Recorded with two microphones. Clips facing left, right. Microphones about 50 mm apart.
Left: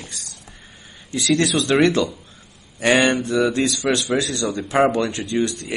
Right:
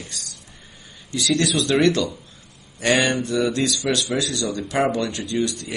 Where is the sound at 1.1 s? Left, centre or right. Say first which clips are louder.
Left 2 dB; left.